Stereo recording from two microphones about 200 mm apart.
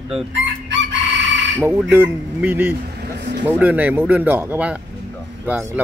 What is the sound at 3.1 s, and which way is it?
Vehicle, 60° right (ahead or behind).